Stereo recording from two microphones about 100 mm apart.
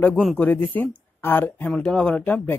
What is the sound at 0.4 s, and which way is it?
Speech, 15° left (ahead or behind).